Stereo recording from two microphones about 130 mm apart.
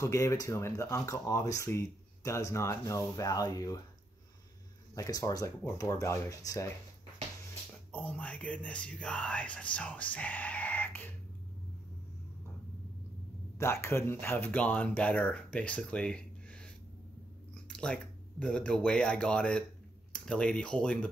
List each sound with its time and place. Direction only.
0.0 s speech: 25° left (ahead or behind)
4.9 s speech: 25° left (ahead or behind)
7.9 s speech: 10° left (ahead or behind)
13.6 s speech: 20° left (ahead or behind)